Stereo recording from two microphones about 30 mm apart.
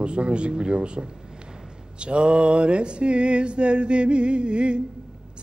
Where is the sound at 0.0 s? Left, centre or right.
Right.